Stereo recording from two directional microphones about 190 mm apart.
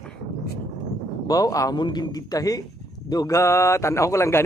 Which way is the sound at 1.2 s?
20° left (ahead or behind).